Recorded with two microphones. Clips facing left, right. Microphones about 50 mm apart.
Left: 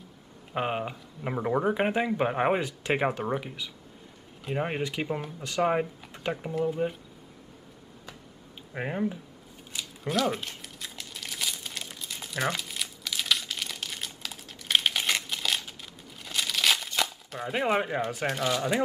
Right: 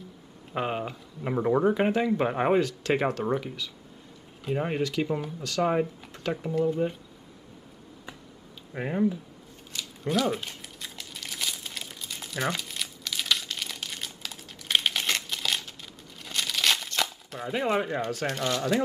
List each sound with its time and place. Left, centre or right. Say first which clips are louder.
0.5 s speech: even; centre
5.0 s speech: right 2 dB; centre
5.4 s speech: even; centre
8.7 s speech: right 1 dB; left
10.0 s crumpling: right 1 dB; centre
17.5 s speech: even; centre